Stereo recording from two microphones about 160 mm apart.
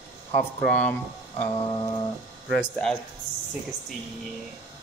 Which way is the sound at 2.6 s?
5° left (ahead or behind).